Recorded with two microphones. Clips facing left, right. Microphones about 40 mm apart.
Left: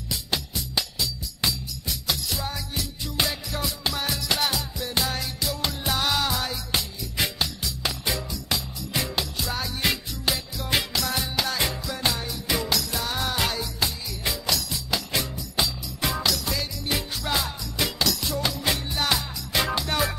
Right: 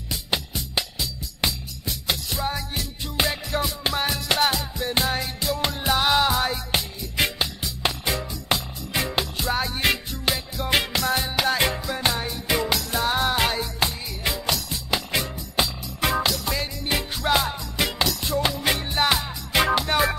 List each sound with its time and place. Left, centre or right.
0.1 s music: right